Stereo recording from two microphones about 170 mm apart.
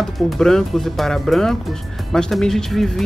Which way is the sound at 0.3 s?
5° left (ahead or behind).